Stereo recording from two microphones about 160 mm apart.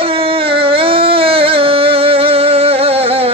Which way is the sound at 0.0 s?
35° right (ahead or behind).